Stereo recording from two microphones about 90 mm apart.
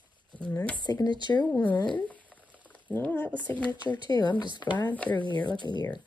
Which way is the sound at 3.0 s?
20° left (ahead or behind).